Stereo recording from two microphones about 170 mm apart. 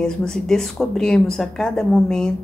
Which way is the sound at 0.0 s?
5° left (ahead or behind).